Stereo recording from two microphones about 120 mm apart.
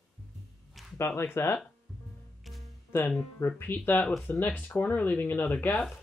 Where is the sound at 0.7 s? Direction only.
Centre (ahead or behind).